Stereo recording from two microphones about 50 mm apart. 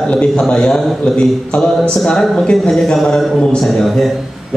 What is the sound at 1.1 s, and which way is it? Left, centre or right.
A man's voice, centre.